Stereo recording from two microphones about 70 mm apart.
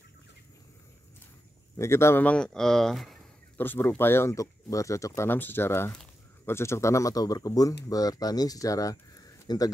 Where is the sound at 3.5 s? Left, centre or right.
Left.